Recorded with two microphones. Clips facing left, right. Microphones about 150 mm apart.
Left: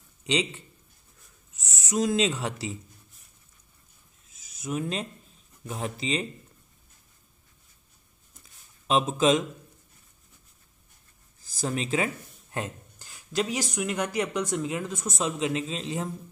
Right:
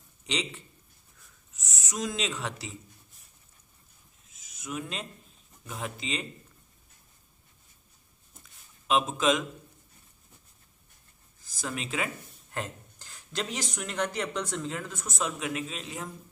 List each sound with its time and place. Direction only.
1.6 s speech: 30° left (ahead or behind)
4.6 s speech: 35° left (ahead or behind)
8.8 s speech: 35° left (ahead or behind)
11.5 s speech: 30° left (ahead or behind)
12.5 s speech: 15° left (ahead or behind)